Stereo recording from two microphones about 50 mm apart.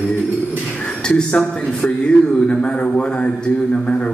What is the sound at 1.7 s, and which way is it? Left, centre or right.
A man's voice, centre.